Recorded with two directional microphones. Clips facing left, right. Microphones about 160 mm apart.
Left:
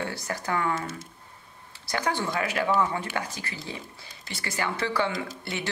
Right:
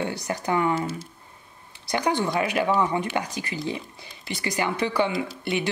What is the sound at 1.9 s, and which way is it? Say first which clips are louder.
Speech: right 4 dB; 15° right (ahead or behind).